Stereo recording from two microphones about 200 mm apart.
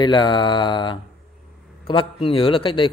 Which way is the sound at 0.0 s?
25° left (ahead or behind).